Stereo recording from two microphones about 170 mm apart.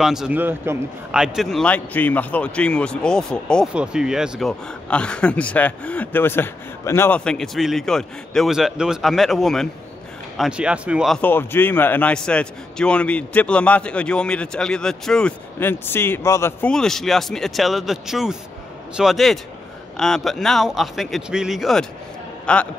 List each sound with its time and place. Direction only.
0.0 s speech: 5° right (ahead or behind)
11.1 s a man's voice: 10° left (ahead or behind)
16.7 s speech: 5° left (ahead or behind)